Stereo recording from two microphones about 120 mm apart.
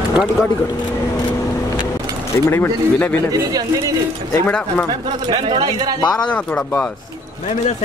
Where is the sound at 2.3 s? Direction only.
20° left (ahead or behind).